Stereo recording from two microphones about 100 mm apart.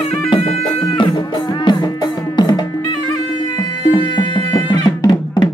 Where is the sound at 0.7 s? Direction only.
55° left (ahead or behind).